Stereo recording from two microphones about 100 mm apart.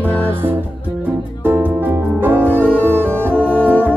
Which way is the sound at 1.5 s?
20° right (ahead or behind).